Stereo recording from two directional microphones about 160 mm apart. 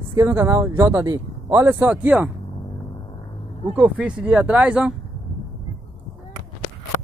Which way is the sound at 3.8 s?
10° right (ahead or behind).